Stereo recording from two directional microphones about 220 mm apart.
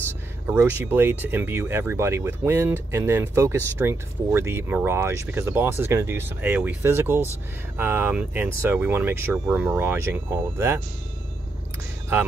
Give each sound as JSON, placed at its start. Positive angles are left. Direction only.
{"t": 0.5, "sound": "speech", "side_deg": -10}